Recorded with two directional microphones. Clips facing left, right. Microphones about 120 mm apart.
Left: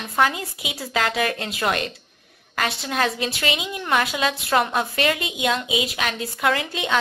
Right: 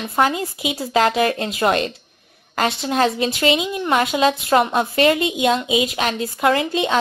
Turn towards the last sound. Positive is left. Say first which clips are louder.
# right 5 dB
turn(degrees=-30)  # may be behind; listen again after turning